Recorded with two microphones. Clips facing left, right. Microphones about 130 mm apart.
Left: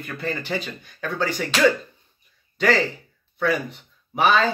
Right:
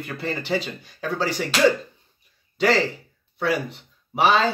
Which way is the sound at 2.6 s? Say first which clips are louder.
Even; 25° right (ahead or behind).